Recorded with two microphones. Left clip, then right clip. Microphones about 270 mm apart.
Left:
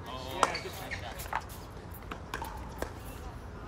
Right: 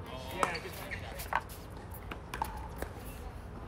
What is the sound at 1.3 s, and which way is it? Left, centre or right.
Music, centre.